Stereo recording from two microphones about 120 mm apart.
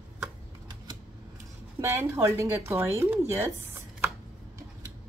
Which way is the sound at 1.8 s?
25° right (ahead or behind).